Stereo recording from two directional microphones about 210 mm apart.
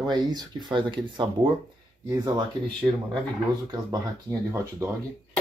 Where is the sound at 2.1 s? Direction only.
20° right (ahead or behind).